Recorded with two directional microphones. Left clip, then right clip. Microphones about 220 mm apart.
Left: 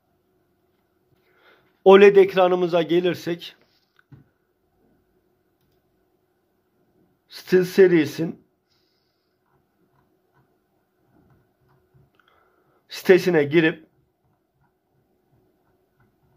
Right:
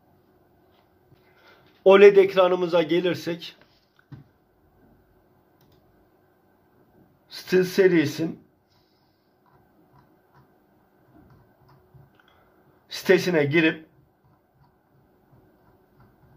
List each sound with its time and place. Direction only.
1.4 s a man's voice: 45° left (ahead or behind)
7.2 s speech: 45° left (ahead or behind)
12.8 s speech: 45° left (ahead or behind)